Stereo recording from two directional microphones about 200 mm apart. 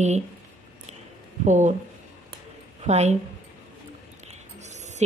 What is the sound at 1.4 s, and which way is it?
Speech, 35° right (ahead or behind).